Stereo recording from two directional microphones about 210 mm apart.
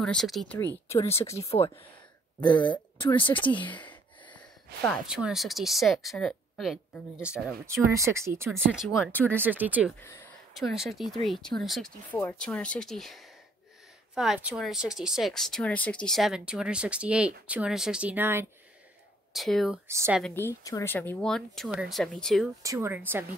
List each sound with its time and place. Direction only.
0.0 s speech: 5° left (ahead or behind)
0.8 s speech: 15° left (ahead or behind)
3.0 s speech: 25° left (ahead or behind)
3.6 s speech: 5° left (ahead or behind)
4.8 s speech: 5° right (ahead or behind)
7.9 s speech: 15° right (ahead or behind)
8.5 s speech: centre (ahead or behind)
9.4 s speech: 10° right (ahead or behind)
9.9 s speech: 15° left (ahead or behind)
10.5 s speech: centre (ahead or behind)
19.3 s speech: centre (ahead or behind)
19.9 s speech: 15° right (ahead or behind)
20.2 s speech: 5° left (ahead or behind)
22.6 s speech: 15° right (ahead or behind)